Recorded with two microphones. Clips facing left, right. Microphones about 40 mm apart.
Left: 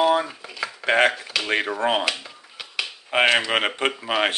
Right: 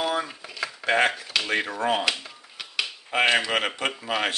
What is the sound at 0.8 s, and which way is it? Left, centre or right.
Speech, left.